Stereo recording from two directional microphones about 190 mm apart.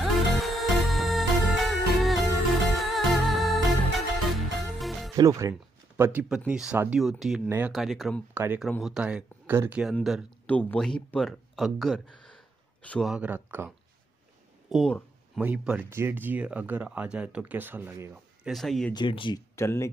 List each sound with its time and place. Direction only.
0.0 s music: centre (ahead or behind)
5.1 s speech: 15° right (ahead or behind); by 7.4 s centre (ahead or behind)
7.4 s speech: 10° right (ahead or behind)
7.7 s speech: centre (ahead or behind)
8.4 s speech: 10° right (ahead or behind)
8.6 s speech: centre (ahead or behind)
14.7 s a sound: 5° left (ahead or behind)
15.4 s speech: 5° right (ahead or behind)
18.5 s speech: centre (ahead or behind)
18.9 s speech: 25° left (ahead or behind)
19.5 s speech: 15° left (ahead or behind)